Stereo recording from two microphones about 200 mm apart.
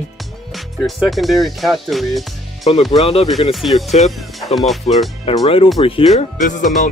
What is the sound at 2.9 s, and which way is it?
Speech, 30° left (ahead or behind).